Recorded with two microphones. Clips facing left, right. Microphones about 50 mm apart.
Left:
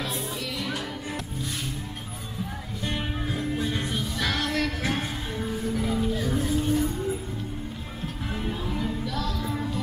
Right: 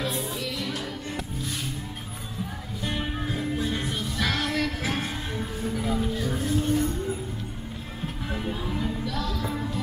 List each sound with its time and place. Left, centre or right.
0.0 s music: centre
2.8 s music: centre
8.3 s music: centre